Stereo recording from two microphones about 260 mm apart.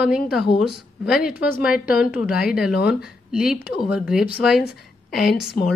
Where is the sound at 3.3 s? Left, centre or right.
Centre.